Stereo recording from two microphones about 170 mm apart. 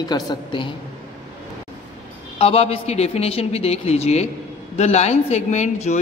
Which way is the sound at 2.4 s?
35° left (ahead or behind).